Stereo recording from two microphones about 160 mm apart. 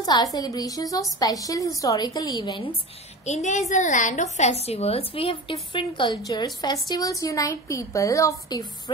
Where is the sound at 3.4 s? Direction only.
50° left (ahead or behind).